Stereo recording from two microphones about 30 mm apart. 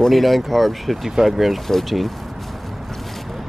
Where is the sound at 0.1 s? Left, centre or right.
Centre.